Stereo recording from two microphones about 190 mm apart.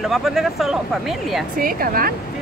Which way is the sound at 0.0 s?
Centre (ahead or behind).